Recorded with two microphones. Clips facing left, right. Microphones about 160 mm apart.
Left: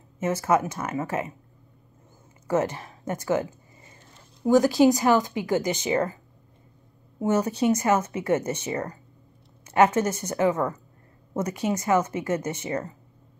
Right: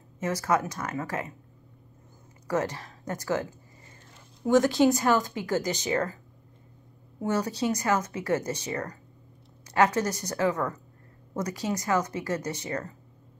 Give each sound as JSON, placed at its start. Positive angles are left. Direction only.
{"t": 0.2, "sound": "speech", "side_deg": 20}
{"t": 2.4, "sound": "speech", "side_deg": 20}
{"t": 4.5, "sound": "a woman's voice", "side_deg": 0}
{"t": 4.8, "sound": "a woman's voice", "side_deg": 15}
{"t": 7.2, "sound": "speech", "side_deg": 25}